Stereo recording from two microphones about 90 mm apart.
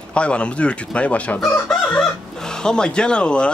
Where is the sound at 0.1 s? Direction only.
10° left (ahead or behind).